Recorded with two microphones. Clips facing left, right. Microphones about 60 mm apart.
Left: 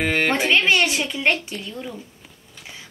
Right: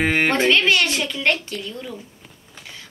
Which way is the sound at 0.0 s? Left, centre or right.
Centre.